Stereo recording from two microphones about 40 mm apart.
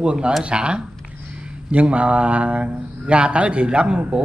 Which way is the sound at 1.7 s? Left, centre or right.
Right.